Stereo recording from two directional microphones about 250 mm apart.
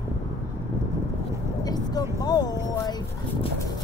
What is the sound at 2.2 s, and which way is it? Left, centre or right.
Speech, centre.